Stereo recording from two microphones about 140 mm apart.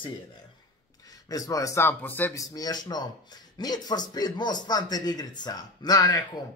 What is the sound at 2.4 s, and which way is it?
Speech, 25° left (ahead or behind).